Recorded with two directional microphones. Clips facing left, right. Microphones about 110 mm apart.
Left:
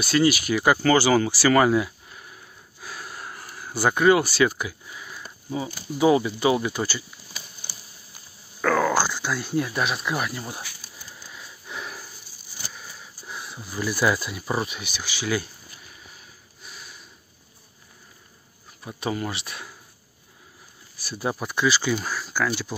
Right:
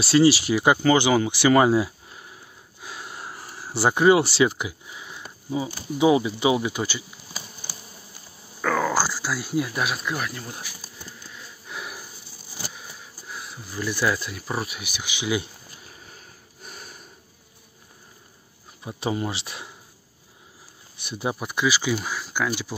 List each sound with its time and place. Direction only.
0.0 s speech: 30° right (ahead or behind)
8.5 s speech: 5° right (ahead or behind)
10.1 s speech: 10° left (ahead or behind)
11.6 s a sound: 5° right (ahead or behind)
13.3 s a sound: centre (ahead or behind)
13.7 s speech: 10° left (ahead or behind)
14.8 s speech: 15° right (ahead or behind)
16.6 s sniff: 45° right (ahead or behind)
18.9 s speech: 25° right (ahead or behind)
20.9 s speech: 20° right (ahead or behind)